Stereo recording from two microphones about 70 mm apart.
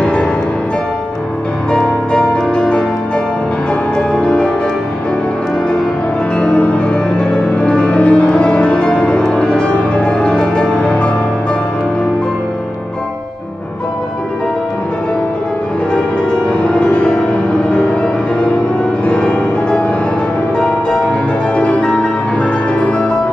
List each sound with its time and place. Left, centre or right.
0.0 s music: centre
1.7 s music: centre
4.1 s music: centre
6.4 s music: centre
15.9 s music: centre